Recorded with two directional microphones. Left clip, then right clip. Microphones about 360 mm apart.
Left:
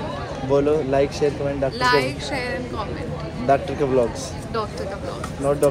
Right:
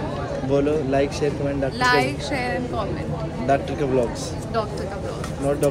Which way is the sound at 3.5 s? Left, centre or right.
Centre.